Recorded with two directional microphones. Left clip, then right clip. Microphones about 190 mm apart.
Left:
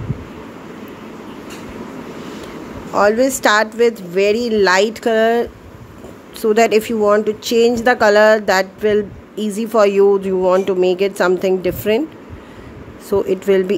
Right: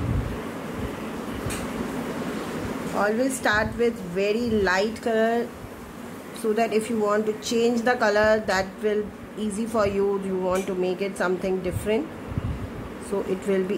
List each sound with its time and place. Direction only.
3.0 s speech: 60° left (ahead or behind)
13.1 s speech: 50° left (ahead or behind)